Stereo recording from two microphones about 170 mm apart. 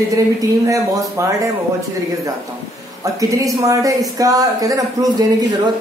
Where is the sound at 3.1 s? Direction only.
20° right (ahead or behind).